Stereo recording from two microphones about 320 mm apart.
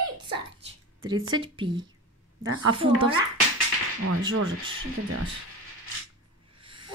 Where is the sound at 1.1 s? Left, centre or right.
Right.